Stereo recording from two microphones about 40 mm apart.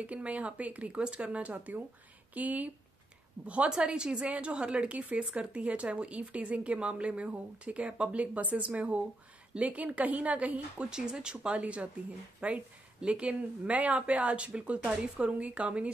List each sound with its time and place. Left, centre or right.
0.0 s speech: right
1.5 s speech: right
3.7 s speech: right
10.9 s speech: centre; by 15.9 s right